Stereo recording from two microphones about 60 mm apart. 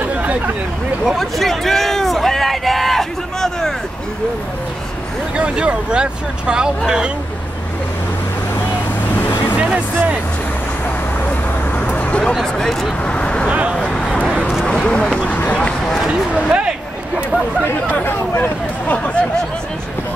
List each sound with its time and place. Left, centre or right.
0.0 s vehicle: right
1.0 s a sound: centre
5.3 s speech: centre
9.6 s speech: right
11.8 s a sound: left
12.5 s speech: centre
13.1 s vehicle: centre
13.5 s speech: right
13.7 s a sound: centre
14.7 s speech: centre
16.4 s speech: centre
18.0 s speech: left